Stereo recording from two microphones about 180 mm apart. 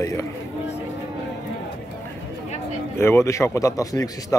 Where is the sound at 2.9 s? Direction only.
15° left (ahead or behind).